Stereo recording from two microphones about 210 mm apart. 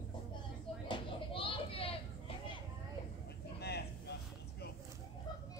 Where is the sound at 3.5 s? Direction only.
50° left (ahead or behind).